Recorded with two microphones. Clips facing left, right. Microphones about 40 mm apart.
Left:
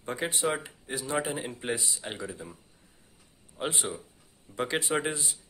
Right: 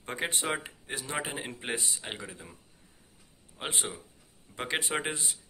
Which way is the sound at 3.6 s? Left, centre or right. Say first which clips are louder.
Left 3 dB; right.